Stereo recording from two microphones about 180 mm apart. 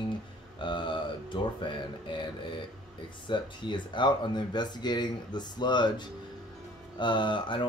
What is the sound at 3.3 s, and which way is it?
Speech, 25° left (ahead or behind).